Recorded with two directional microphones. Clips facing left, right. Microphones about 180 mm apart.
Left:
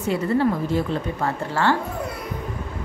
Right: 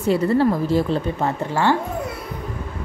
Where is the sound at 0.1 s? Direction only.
35° right (ahead or behind).